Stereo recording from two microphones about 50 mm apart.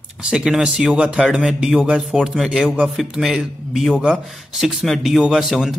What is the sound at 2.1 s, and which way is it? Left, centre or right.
A man's voice, centre.